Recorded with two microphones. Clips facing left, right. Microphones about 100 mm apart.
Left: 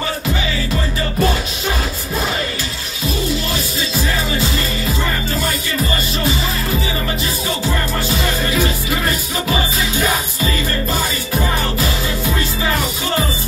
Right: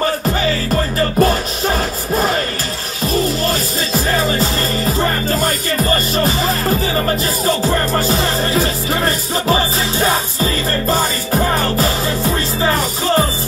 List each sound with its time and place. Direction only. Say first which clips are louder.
0.0 s music: right 5 dB; 45° right (ahead or behind)
3.2 s music: right 4 dB; 40° right (ahead or behind)